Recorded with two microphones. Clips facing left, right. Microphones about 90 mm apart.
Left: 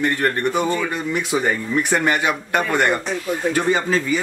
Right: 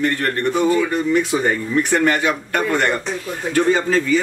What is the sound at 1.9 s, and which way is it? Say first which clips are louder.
A man's voice: right 2 dB; 15° left (ahead or behind).